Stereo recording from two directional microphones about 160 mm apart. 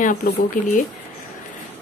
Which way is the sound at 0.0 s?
55° left (ahead or behind).